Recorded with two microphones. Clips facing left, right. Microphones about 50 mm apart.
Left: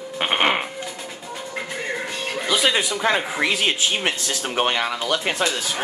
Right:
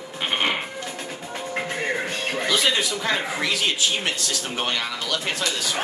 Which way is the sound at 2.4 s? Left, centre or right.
Centre.